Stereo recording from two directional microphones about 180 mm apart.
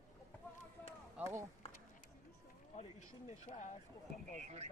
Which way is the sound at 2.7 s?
35° left (ahead or behind).